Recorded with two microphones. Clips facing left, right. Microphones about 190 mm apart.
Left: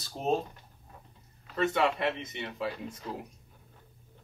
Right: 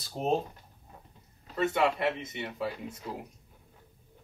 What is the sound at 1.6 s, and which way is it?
Speech, 5° right (ahead or behind).